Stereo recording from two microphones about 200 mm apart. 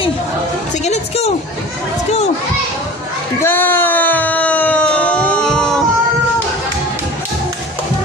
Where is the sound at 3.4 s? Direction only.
10° left (ahead or behind).